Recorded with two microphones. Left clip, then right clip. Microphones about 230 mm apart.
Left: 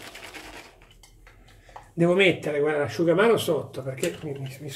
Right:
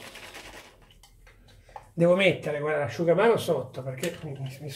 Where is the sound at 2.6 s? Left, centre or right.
Left.